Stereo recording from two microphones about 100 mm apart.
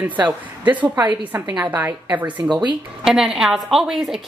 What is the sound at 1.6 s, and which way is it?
Speech, 15° right (ahead or behind).